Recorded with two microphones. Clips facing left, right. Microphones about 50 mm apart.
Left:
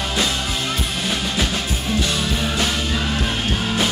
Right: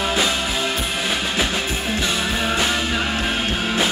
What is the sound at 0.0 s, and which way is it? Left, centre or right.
Music, centre.